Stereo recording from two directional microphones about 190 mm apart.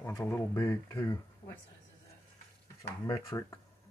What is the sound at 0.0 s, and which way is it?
Speech, 15° left (ahead or behind).